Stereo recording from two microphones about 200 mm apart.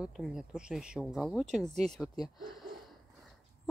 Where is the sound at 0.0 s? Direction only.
Centre (ahead or behind).